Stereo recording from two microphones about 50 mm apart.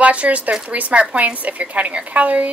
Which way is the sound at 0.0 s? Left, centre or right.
Right.